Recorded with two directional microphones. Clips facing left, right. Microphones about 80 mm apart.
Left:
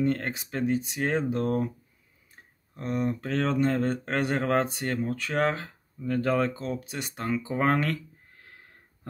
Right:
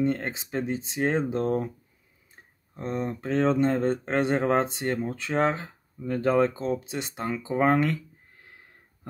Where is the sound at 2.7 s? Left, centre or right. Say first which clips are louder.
Left 1 dB; right.